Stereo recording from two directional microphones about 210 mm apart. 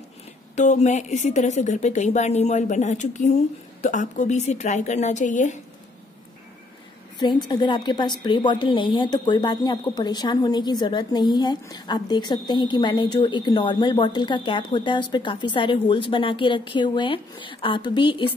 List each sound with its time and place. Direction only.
0.6 s a woman's voice: 35° left (ahead or behind)
7.2 s a woman's voice: 20° left (ahead or behind)